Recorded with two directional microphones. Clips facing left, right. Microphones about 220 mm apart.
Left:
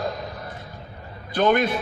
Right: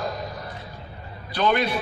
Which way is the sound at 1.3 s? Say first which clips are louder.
Left 3 dB; 50° left (ahead or behind).